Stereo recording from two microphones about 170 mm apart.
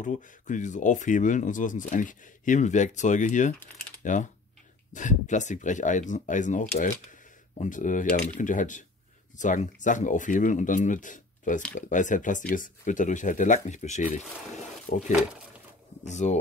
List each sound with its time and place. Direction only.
0.0 s speech: 45° left (ahead or behind)